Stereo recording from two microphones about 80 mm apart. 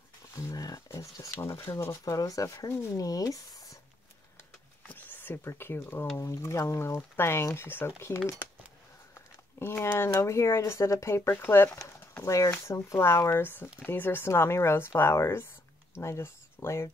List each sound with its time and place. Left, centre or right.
0.5 s speech: left
1.3 s speech: left
4.8 s speech: left
6.1 s speech: left